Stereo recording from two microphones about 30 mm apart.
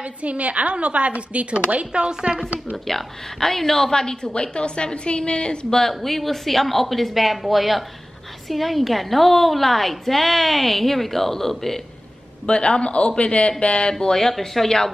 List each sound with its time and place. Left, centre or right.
0.0 s speech: right
1.9 s speech: right
2.9 s speech: centre
3.9 s a woman's voice: left
4.3 s a man's voice: left
5.9 s a woman's voice: centre
12.4 s a man's voice: left
14.1 s speech: centre